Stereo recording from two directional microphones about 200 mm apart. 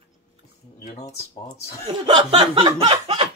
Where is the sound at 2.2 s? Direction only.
25° right (ahead or behind).